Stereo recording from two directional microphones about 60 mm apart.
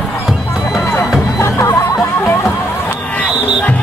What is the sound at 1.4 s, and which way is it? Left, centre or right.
Music, left.